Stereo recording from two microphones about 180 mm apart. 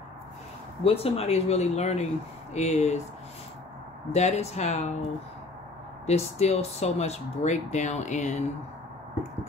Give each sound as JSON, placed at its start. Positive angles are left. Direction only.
{"t": 0.8, "sound": "speech", "side_deg": 35}
{"t": 4.1, "sound": "speech", "side_deg": 40}
{"t": 6.0, "sound": "speech", "side_deg": 35}